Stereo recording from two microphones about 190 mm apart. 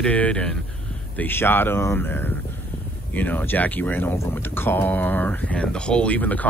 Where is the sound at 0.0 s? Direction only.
5° left (ahead or behind).